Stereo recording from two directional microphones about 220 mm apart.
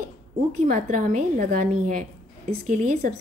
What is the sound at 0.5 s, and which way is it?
A woman's voice, 35° right (ahead or behind).